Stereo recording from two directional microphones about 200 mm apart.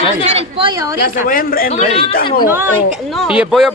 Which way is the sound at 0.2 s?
30° right (ahead or behind).